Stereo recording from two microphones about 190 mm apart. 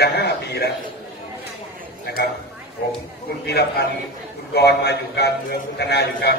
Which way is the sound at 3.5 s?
60° left (ahead or behind).